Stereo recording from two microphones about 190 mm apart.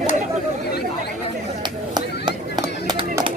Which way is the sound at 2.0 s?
25° right (ahead or behind).